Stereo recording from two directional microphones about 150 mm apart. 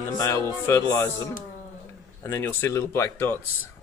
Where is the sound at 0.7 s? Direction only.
20° left (ahead or behind).